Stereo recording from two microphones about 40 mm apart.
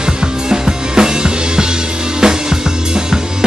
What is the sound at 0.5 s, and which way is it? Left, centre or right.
Music, centre.